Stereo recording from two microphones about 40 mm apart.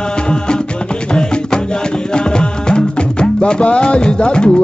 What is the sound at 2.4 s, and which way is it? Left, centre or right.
Music, left.